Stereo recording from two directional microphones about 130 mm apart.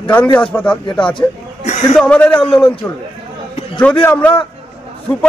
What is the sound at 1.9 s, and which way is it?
Speech, 10° left (ahead or behind).